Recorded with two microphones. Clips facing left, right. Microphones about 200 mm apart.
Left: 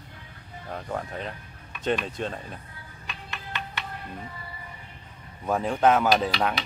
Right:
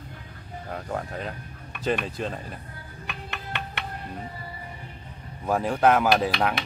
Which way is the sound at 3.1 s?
60° right (ahead or behind).